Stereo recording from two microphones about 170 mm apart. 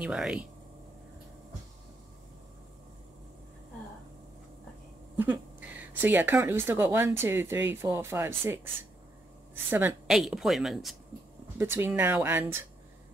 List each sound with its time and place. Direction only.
0.0 s speech: 5° right (ahead or behind)
5.1 s speech: 10° right (ahead or behind)
9.7 s speech: 10° right (ahead or behind)
10.0 s speech: centre (ahead or behind)
11.5 s speech: 15° right (ahead or behind)